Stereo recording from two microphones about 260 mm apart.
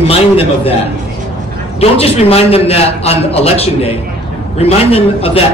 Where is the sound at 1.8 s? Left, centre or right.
Left.